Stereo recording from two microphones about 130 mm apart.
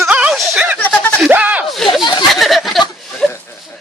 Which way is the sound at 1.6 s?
Centre (ahead or behind).